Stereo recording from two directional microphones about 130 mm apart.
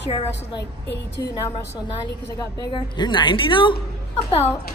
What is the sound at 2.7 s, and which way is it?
A man's voice, 35° left (ahead or behind).